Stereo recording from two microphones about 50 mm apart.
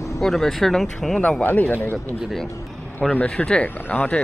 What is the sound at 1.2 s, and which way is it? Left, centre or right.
Speech, left.